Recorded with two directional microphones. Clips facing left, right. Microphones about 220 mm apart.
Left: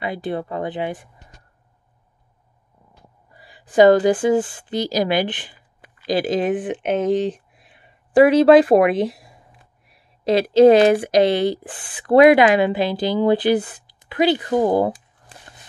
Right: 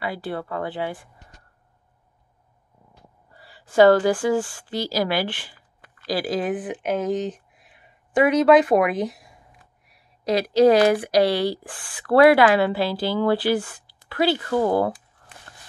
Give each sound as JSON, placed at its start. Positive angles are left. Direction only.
{"t": 0.0, "sound": "speech", "side_deg": 20}
{"t": 3.3, "sound": "speech", "side_deg": 15}